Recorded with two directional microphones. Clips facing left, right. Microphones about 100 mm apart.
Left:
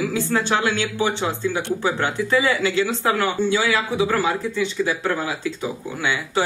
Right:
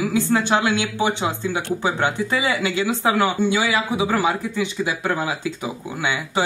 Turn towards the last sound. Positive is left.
turn(degrees=-15)  # may be behind; listen again after turning